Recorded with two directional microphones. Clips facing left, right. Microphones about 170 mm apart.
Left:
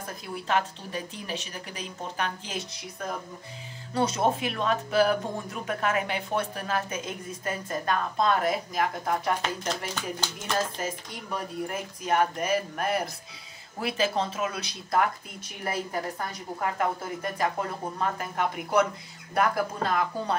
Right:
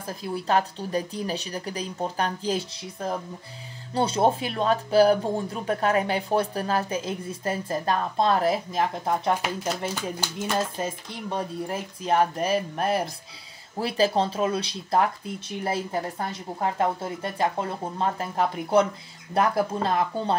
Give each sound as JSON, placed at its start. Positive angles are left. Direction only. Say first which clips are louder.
{"t": 0.0, "sound": "speech", "louder": "right 5 dB", "side_deg": -35}
{"t": 9.4, "sound": "speech", "louder": "right 3 dB", "side_deg": -10}
{"t": 10.8, "sound": "a woman's voice", "louder": "right 3 dB", "side_deg": -25}